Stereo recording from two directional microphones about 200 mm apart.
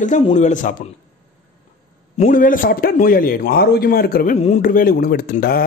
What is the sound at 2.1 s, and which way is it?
Speech, 40° left (ahead or behind).